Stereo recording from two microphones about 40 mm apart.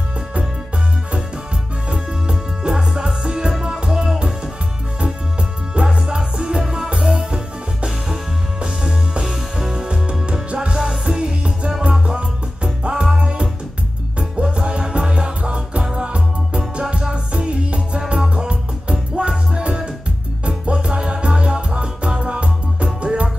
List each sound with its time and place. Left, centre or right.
1.9 s music: right
6.0 s music: right
9.2 s music: centre